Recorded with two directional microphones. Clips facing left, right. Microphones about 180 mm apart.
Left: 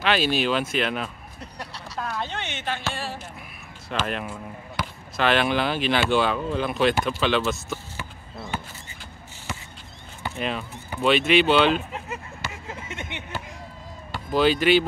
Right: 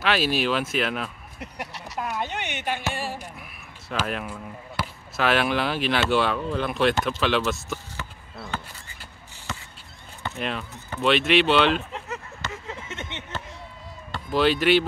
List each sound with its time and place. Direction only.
0.0 s speech: centre (ahead or behind)
1.4 s speech: 20° right (ahead or behind)
3.9 s speech: centre (ahead or behind)
8.0 s basketball bounce: 15° left (ahead or behind)
10.3 s speech: centre (ahead or behind)
11.9 s a sound: 15° left (ahead or behind)
14.1 s speech: centre (ahead or behind)